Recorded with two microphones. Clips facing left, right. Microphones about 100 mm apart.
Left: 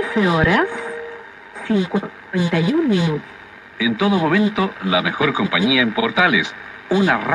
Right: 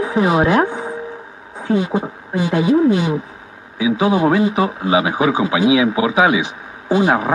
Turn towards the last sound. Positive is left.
turn(degrees=-30)  # may be behind; listen again after turning